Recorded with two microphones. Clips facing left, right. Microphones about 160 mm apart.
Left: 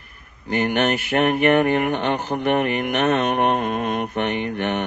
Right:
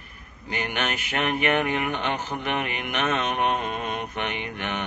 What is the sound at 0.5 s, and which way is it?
Speech, 50° left (ahead or behind).